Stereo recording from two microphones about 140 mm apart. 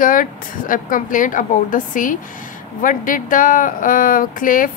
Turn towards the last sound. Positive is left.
turn(degrees=75)  # may be behind; listen again after turning